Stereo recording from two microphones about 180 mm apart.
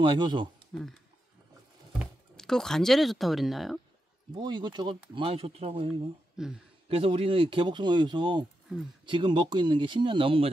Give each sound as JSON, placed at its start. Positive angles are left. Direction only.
{"t": 0.0, "sound": "speech", "side_deg": -25}
{"t": 0.7, "sound": "speech", "side_deg": 0}
{"t": 2.0, "sound": "speech", "side_deg": 5}
{"t": 4.4, "sound": "speech", "side_deg": -25}
{"t": 6.3, "sound": "speech", "side_deg": -5}
{"t": 6.9, "sound": "speech", "side_deg": -30}
{"t": 8.7, "sound": "speech", "side_deg": -5}
{"t": 9.0, "sound": "speech", "side_deg": -25}